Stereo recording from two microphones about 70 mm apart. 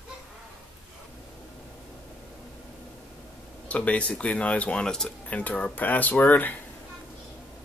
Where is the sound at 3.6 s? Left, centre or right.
Centre.